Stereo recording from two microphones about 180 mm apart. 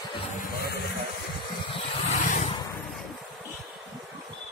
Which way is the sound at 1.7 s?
40° left (ahead or behind).